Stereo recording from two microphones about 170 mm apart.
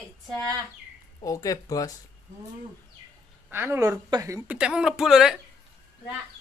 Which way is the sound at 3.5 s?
15° right (ahead or behind).